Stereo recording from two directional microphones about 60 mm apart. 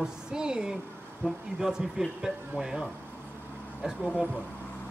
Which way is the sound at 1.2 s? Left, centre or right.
Right.